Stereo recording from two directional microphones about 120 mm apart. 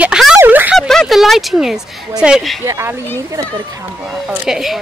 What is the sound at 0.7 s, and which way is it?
A woman's voice, centre (ahead or behind).